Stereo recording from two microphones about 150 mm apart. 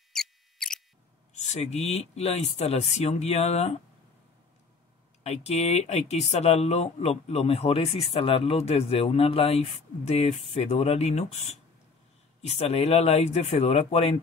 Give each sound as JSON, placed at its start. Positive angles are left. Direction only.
{"t": 0.1, "sound": "a sound", "side_deg": 5}
{"t": 1.3, "sound": "speech", "side_deg": 50}
{"t": 5.2, "sound": "speech", "side_deg": 45}